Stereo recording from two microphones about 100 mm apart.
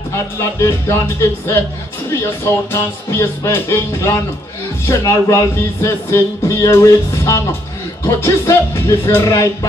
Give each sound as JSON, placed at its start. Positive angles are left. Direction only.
{"t": 0.1, "sound": "speech", "side_deg": 30}